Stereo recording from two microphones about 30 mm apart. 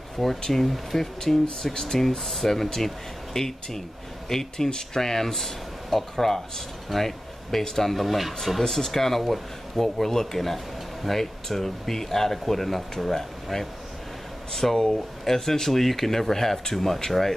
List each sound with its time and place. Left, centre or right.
0.5 s speech: centre
8.0 s speech: centre
8.5 s speech: centre